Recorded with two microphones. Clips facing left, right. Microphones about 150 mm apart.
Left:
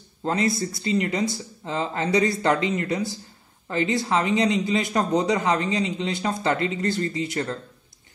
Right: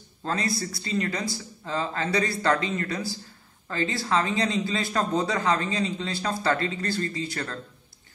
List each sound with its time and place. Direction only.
0.2 s a man's voice: 20° left (ahead or behind)